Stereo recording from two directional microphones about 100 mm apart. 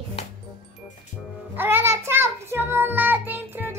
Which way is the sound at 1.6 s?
25° right (ahead or behind).